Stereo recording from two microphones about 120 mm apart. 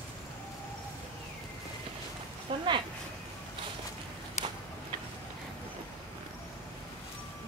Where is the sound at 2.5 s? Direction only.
45° right (ahead or behind).